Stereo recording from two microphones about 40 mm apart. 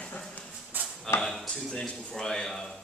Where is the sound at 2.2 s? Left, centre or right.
Centre.